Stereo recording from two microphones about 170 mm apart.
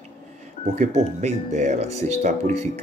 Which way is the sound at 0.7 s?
45° right (ahead or behind).